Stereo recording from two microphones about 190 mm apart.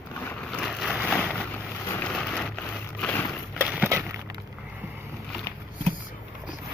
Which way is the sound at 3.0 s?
10° left (ahead or behind).